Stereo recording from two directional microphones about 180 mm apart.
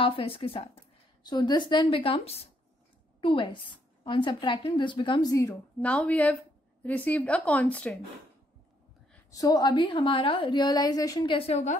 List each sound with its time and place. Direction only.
0.0 s a woman's voice: 30° left (ahead or behind); by 8.0 s 10° left (ahead or behind)
9.3 s a woman's voice: 20° left (ahead or behind); by 11.7 s 35° left (ahead or behind)